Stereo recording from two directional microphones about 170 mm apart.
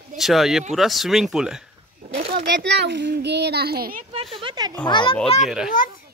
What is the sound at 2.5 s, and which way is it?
A child's voice, 85° right.